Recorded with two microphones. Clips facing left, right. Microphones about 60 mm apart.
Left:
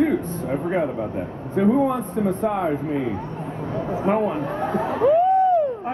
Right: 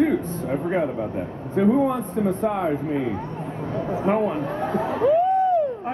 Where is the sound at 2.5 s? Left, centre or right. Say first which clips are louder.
Left 1 dB; centre.